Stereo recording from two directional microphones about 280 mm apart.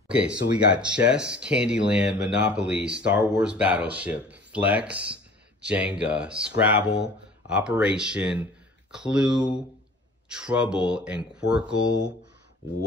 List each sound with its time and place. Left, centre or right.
0.1 s speech: centre
5.9 s speech: centre